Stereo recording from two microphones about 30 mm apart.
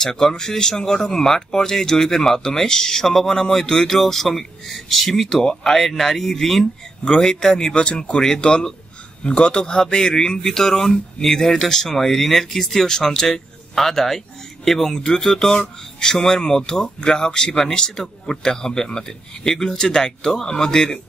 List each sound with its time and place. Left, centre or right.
0.0 s speech: centre
4.0 s speech: centre
5.4 s speech: left
5.7 s speech: centre
7.7 s speech: left; by 15.0 s centre
15.0 s speech: left